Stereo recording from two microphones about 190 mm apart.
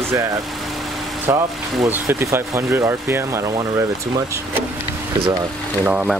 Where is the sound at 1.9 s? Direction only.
10° right (ahead or behind).